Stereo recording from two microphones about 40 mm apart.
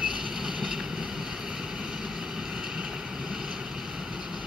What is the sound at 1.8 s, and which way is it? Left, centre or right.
Vehicle, centre.